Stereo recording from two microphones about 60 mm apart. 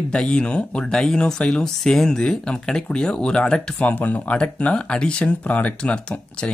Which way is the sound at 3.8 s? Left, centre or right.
Left.